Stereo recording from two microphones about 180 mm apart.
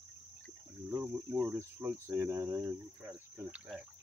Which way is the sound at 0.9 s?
10° right (ahead or behind).